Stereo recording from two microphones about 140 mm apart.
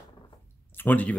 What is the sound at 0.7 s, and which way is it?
Speech, 10° left (ahead or behind).